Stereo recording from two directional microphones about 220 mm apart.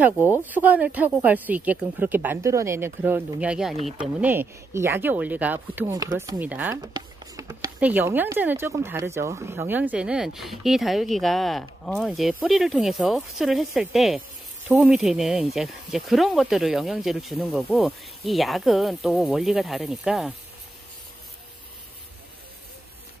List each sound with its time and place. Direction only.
0.5 s speech: 5° right (ahead or behind)
6.8 s a sound: 20° right (ahead or behind)
7.8 s speech: 10° right (ahead or behind)